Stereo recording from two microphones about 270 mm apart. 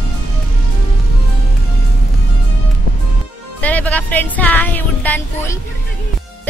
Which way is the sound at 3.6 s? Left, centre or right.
Centre.